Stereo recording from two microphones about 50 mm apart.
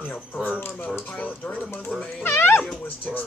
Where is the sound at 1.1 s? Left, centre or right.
Left.